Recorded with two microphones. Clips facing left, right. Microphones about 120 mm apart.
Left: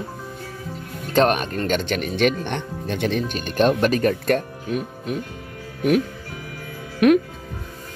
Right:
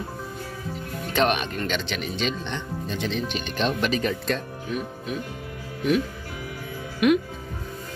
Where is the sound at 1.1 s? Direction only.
45° left (ahead or behind).